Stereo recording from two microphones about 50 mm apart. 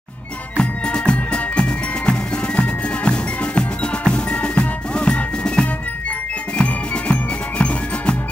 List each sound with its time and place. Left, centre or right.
0.6 s music: centre